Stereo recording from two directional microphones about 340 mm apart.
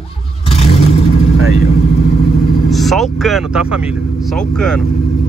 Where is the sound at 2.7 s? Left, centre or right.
Centre.